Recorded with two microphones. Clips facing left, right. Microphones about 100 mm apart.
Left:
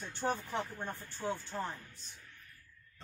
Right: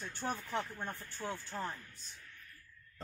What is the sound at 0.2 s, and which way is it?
Speech, 25° left (ahead or behind).